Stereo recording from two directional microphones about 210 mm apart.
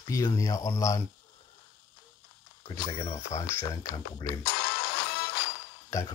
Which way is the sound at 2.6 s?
20° left (ahead or behind).